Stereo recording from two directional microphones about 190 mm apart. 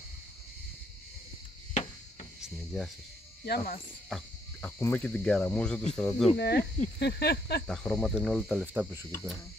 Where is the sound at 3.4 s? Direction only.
55° left (ahead or behind).